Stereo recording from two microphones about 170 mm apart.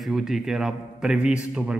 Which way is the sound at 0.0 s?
Centre (ahead or behind).